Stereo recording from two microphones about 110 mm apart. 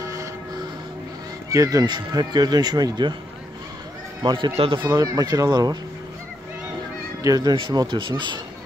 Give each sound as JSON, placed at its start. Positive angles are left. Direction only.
{"t": 0.0, "sound": "train", "side_deg": -30}
{"t": 1.5, "sound": "speech", "side_deg": -35}
{"t": 4.2, "sound": "speech", "side_deg": -45}
{"t": 4.8, "sound": "speech", "side_deg": -35}
{"t": 7.2, "sound": "speech", "side_deg": -35}